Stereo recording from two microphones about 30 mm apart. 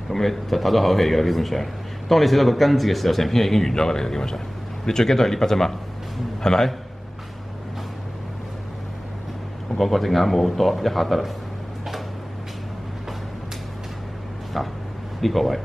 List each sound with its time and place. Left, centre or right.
0.1 s a man's voice: centre
3.7 s a man's voice: centre
6.4 s a man's voice: left
9.8 s a man's voice: centre
15.1 s speech: centre